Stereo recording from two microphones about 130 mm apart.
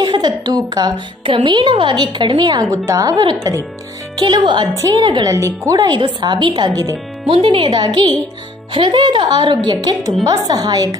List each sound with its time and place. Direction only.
0.0 s a woman's voice: 35° right (ahead or behind)
7.4 s a woman's voice: 40° right (ahead or behind)